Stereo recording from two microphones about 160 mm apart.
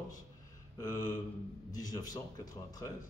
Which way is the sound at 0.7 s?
25° left (ahead or behind).